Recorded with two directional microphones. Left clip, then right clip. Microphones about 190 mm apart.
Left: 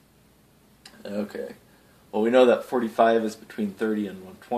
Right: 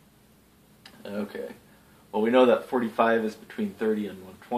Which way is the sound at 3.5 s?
45° left (ahead or behind).